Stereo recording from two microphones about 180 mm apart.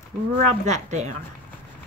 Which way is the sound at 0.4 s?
40° right (ahead or behind).